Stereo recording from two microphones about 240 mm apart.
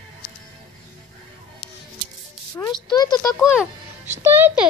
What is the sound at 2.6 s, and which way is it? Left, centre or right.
Speech, centre.